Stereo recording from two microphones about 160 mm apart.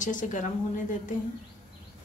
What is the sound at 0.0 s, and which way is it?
Speech, 55° left (ahead or behind).